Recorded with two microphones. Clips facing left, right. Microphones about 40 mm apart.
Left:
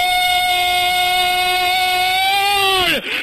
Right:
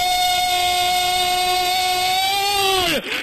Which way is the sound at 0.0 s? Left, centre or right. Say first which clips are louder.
Left 3 dB; centre.